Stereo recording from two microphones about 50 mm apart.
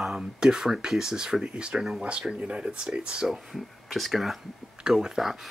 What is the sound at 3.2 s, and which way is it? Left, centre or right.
Speech, centre.